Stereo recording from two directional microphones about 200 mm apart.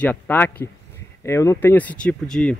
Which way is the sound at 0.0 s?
10° left (ahead or behind).